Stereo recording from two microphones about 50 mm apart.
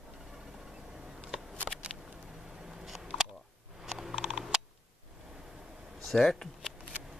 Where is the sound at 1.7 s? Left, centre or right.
Right.